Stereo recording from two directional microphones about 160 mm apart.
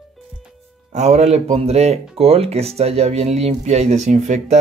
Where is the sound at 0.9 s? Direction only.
45° right (ahead or behind).